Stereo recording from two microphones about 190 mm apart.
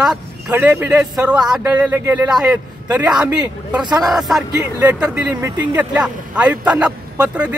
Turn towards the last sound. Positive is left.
turn(degrees=-5)  # may be behind; listen again after turning